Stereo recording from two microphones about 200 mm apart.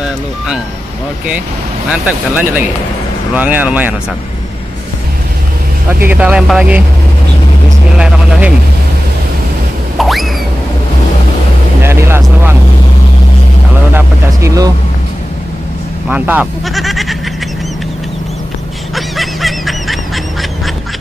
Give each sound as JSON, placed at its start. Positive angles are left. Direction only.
{"t": 1.9, "sound": "speech", "side_deg": -5}
{"t": 6.0, "sound": "speech", "side_deg": -5}
{"t": 8.0, "sound": "speech", "side_deg": -5}
{"t": 9.9, "sound": "a sound", "side_deg": 0}
{"t": 11.8, "sound": "speech", "side_deg": -10}
{"t": 13.9, "sound": "speech", "side_deg": -15}
{"t": 16.1, "sound": "speech", "side_deg": -10}
{"t": 18.9, "sound": "goose", "side_deg": 0}